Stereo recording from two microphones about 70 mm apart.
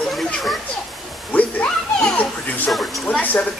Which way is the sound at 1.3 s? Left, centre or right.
Centre.